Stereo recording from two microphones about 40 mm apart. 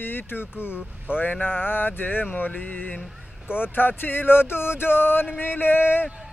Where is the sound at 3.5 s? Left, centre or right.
Left.